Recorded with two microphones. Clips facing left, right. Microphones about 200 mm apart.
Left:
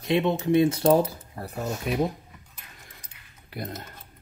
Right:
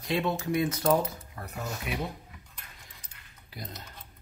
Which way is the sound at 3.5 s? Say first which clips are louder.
Left 8 dB; 60° left (ahead or behind).